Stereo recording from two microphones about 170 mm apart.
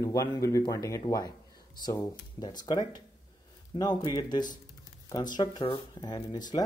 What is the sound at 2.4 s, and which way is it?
Speech, 25° left (ahead or behind).